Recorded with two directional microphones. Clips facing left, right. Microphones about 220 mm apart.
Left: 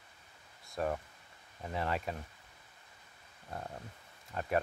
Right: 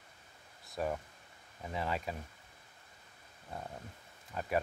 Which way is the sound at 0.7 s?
Centre (ahead or behind).